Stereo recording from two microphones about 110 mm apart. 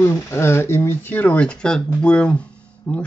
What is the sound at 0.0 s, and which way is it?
Speech, 25° left (ahead or behind).